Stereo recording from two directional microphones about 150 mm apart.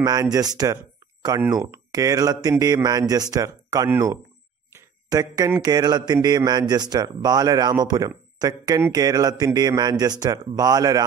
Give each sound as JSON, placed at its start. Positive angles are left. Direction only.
{"t": 0.0, "sound": "speech", "side_deg": -25}
{"t": 4.7, "sound": "a sound", "side_deg": -25}
{"t": 5.5, "sound": "speech", "side_deg": -25}